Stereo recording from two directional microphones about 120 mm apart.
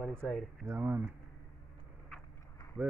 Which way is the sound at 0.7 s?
20° right (ahead or behind).